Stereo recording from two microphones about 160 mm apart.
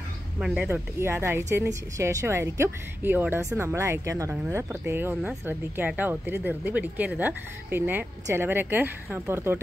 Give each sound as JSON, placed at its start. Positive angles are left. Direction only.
{"t": 0.4, "sound": "speech", "side_deg": -10}